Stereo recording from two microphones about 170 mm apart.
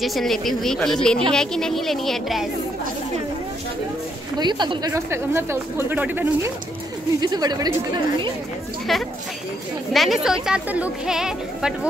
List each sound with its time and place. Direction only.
0.0 s speech: centre (ahead or behind)
4.4 s speech: 25° right (ahead or behind); by 6.5 s 10° right (ahead or behind)
7.2 s a woman's voice: 25° right (ahead or behind)
9.9 s speech: centre (ahead or behind)